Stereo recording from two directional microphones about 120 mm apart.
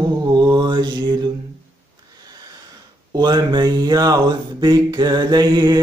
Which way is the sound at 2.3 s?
35° right (ahead or behind).